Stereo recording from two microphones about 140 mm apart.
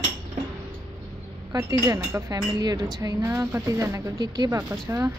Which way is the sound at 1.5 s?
20° right (ahead or behind).